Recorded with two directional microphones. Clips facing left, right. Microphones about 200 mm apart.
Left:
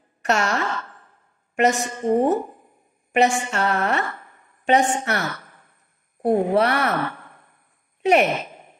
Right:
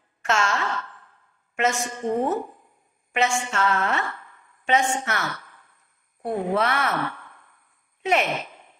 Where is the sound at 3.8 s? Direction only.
45° left (ahead or behind).